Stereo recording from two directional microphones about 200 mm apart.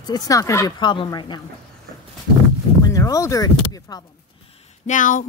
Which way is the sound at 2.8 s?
15° left (ahead or behind).